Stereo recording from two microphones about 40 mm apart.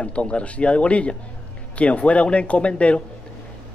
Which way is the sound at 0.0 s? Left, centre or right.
Left.